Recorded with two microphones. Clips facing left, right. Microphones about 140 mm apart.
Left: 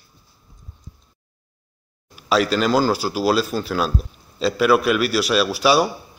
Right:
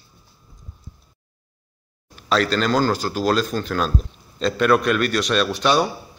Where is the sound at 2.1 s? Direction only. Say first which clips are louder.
Left 1 dB; 10° left (ahead or behind).